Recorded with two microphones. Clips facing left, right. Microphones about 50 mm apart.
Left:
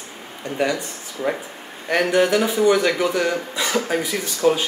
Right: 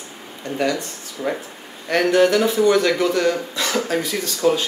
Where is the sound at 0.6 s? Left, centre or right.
Centre.